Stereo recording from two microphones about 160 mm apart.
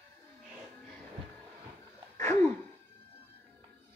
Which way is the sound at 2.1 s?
20° left (ahead or behind).